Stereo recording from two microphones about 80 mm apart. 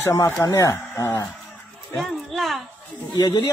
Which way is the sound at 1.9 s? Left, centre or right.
Centre.